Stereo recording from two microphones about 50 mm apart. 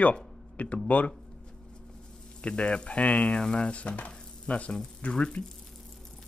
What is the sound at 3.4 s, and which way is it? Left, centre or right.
Frying, centre.